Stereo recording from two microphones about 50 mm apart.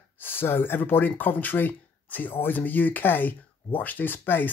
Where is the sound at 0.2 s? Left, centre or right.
Left.